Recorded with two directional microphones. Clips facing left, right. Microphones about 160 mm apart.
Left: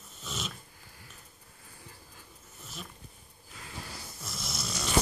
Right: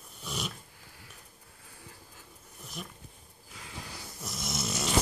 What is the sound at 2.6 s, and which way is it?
Dog, 15° right (ahead or behind).